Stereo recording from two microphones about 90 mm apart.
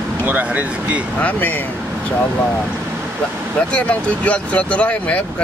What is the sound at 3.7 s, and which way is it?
Speech, 15° left (ahead or behind).